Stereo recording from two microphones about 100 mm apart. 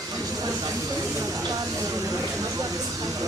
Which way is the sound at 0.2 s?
35° right (ahead or behind).